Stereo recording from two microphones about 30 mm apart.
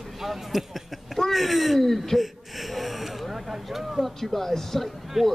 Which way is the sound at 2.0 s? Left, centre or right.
Centre.